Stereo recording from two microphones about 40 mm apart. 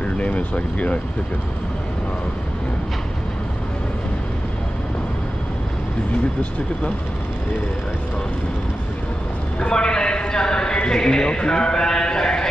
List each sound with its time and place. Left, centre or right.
0.0 s speech: left
9.6 s a man's voice: left